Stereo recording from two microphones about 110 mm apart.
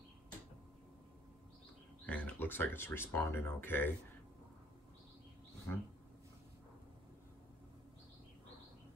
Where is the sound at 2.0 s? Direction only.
15° left (ahead or behind).